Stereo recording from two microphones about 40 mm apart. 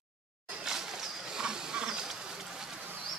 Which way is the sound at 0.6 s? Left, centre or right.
Centre.